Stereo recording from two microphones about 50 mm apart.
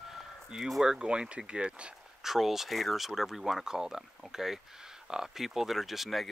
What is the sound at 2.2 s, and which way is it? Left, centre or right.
Speech, centre.